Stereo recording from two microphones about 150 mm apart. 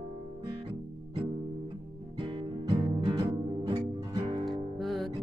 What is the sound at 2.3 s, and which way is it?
Music, 35° right (ahead or behind).